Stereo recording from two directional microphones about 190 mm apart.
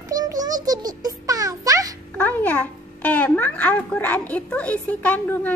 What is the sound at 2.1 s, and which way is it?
A child's voice, 10° left (ahead or behind).